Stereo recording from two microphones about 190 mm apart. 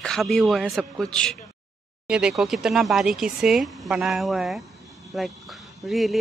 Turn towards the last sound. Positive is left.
turn(degrees=0)  # may be behind; listen again after turning